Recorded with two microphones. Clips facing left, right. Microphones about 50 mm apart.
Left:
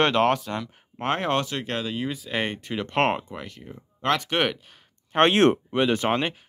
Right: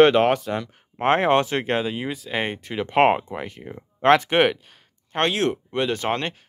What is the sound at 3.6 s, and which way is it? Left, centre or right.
Speech, right.